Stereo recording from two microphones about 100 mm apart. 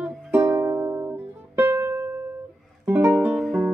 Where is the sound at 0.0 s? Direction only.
15° right (ahead or behind).